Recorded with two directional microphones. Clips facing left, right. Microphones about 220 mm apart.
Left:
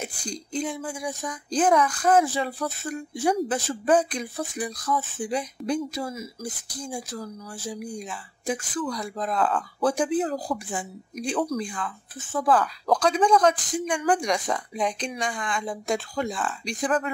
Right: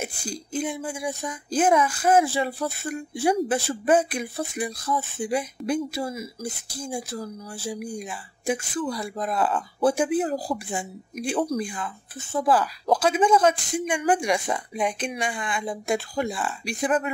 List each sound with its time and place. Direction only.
0.3 s speech: 5° right (ahead or behind)
6.4 s speech: 25° right (ahead or behind)
6.8 s speech: 10° right (ahead or behind)
12.2 s speech: 25° right (ahead or behind)
12.9 s speech: 5° right (ahead or behind)